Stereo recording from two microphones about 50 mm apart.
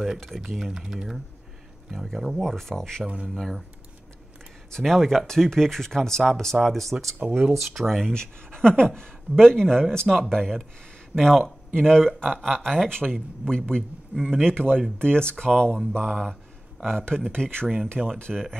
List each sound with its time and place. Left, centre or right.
0.0 s speech: centre
4.6 s speech: centre
7.2 s speech: right
7.5 s speech: centre
8.1 s speech: centre
14.1 s speech: centre
14.4 s speech: centre